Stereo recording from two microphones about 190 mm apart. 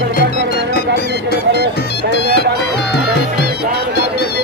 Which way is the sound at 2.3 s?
60° left (ahead or behind).